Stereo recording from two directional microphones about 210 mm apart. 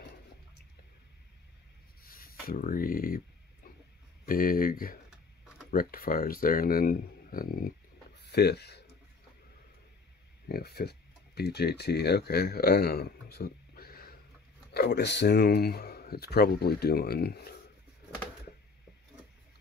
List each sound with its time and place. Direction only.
2.0 s speech: 45° left (ahead or behind)
3.6 s pig: 45° left (ahead or behind)
4.3 s speech: 45° left (ahead or behind)
8.2 s a sound: 50° left (ahead or behind)
10.5 s speech: 50° left (ahead or behind)